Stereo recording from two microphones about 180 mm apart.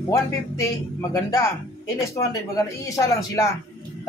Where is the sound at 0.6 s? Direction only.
15° left (ahead or behind).